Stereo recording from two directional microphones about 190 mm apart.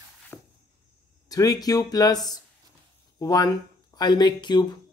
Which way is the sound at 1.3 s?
20° left (ahead or behind).